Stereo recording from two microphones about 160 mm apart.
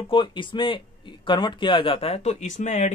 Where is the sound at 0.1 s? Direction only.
30° left (ahead or behind).